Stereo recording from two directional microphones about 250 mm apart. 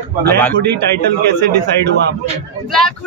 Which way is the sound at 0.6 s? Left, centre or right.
Right.